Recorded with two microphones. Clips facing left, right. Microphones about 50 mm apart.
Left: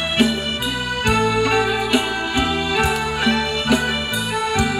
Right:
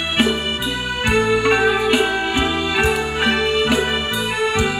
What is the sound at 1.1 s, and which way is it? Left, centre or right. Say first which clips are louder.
Music: right 2 dB; right.